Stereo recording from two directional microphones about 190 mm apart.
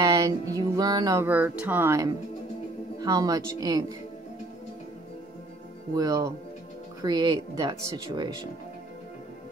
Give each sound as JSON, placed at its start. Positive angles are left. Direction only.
{"t": 0.0, "sound": "music", "side_deg": -20}
{"t": 3.0, "sound": "speech", "side_deg": -20}
{"t": 5.9, "sound": "speech", "side_deg": -20}